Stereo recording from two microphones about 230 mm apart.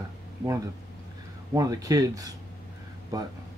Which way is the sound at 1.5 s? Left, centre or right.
Centre.